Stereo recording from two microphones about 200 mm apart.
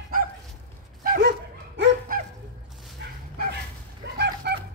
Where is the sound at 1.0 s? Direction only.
45° right (ahead or behind).